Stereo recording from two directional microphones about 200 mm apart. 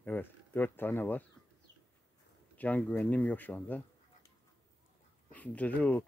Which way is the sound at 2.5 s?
10° left (ahead or behind).